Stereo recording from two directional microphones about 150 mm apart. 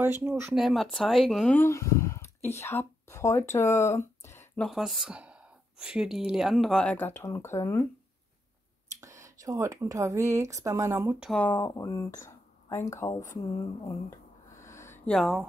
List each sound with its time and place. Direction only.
0.0 s speech: 15° right (ahead or behind)
0.6 s speech: centre (ahead or behind); by 4.5 s 20° left (ahead or behind)
4.6 s speech: centre (ahead or behind); by 7.8 s 20° left (ahead or behind)
8.8 s speech: 20° right (ahead or behind)
11.1 s speech: centre (ahead or behind)
11.6 s speech: 25° left (ahead or behind)
15.0 s speech: centre (ahead or behind)